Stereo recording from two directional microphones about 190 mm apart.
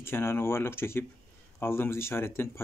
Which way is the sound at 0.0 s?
10° left (ahead or behind).